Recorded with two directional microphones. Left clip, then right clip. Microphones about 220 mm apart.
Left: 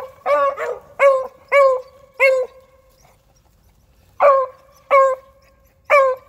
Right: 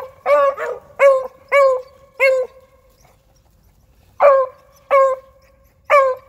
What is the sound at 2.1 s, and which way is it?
Dog, 10° left (ahead or behind).